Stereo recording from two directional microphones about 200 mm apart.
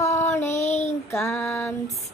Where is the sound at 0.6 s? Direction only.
35° left (ahead or behind).